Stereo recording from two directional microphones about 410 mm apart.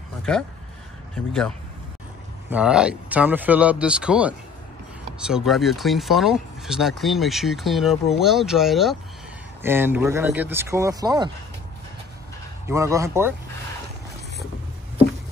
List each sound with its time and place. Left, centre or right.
0.2 s speech: centre
2.5 s speech: centre
12.6 s speech: centre